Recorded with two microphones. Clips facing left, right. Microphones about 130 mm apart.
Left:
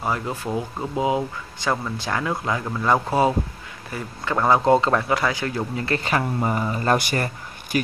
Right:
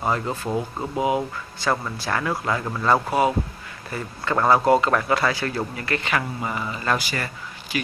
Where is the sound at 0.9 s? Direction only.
20° left (ahead or behind).